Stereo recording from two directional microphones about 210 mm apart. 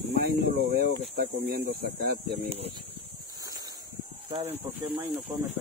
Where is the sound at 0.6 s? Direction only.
50° right (ahead or behind).